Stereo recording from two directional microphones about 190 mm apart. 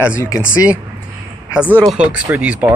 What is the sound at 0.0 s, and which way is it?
Speech, 15° left (ahead or behind).